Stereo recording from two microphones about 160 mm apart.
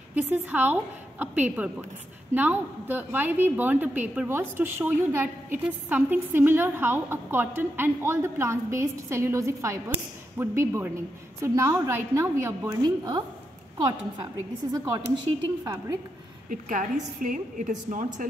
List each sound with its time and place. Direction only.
0.1 s a woman's voice: 10° right (ahead or behind)
15.6 s a woman's voice: 20° right (ahead or behind)
16.4 s a woman's voice: 55° right (ahead or behind)